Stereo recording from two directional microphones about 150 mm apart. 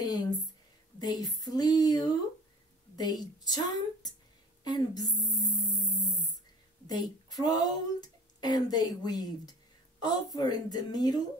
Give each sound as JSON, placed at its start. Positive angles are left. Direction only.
{"t": 0.0, "sound": "a sound", "side_deg": 25}
{"t": 0.9, "sound": "speech", "side_deg": 25}
{"t": 6.9, "sound": "speech", "side_deg": 25}